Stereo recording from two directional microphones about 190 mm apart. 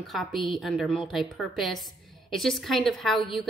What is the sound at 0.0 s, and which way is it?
A woman's voice, centre (ahead or behind).